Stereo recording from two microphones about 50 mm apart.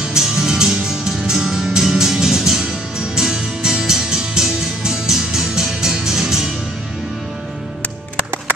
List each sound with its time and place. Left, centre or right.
0.0 s music: centre